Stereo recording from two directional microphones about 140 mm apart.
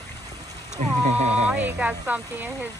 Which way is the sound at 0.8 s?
50° right (ahead or behind).